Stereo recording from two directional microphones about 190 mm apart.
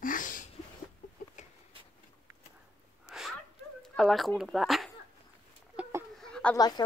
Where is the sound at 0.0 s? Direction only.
45° left (ahead or behind).